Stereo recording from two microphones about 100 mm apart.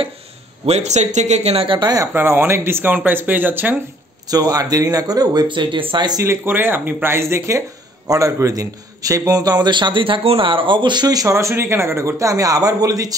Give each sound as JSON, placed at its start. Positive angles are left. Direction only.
{"t": 1.0, "sound": "speech", "side_deg": -90}
{"t": 1.4, "sound": "speech", "side_deg": -70}
{"t": 1.8, "sound": "a man's voice", "side_deg": -40}
{"t": 2.1, "sound": "speech", "side_deg": -20}
{"t": 4.3, "sound": "a man's voice", "side_deg": -40}
{"t": 6.2, "sound": "a man's voice", "side_deg": -20}